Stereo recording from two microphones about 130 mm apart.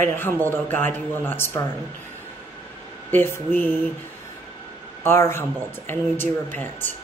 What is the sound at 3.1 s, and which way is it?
Speech, 15° left (ahead or behind).